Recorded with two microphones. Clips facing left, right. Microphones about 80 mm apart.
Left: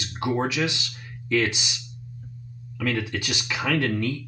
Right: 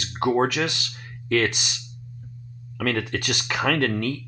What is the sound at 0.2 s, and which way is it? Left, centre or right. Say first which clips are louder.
Speech: right 3 dB; right.